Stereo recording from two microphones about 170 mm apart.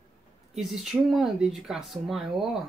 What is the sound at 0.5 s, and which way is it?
Speech, centre (ahead or behind).